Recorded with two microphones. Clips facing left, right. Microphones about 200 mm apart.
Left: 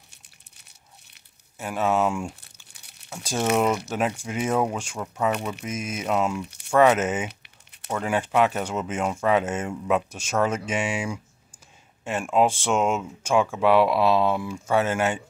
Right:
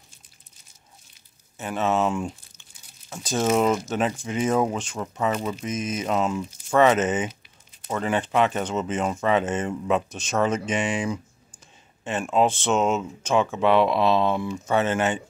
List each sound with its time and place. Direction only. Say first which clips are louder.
1.6 s speech: even; 10° left (ahead or behind)
2.7 s crumpling: even; 70° left (ahead or behind)
3.1 s speech: right 2 dB; 10° left (ahead or behind)
4.9 s speech: right 2 dB; 5° right (ahead or behind)
5.7 s speech: even; 10° left (ahead or behind)
6.4 s speech: right 2 dB; 65° left (ahead or behind)
6.8 s speech: even; 10° left (ahead or behind)
7.4 s a sound: even; 65° left (ahead or behind)
8.0 s speech: even; 10° left (ahead or behind)